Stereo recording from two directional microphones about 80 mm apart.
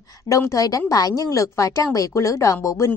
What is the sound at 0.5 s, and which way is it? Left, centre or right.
A woman's voice, left.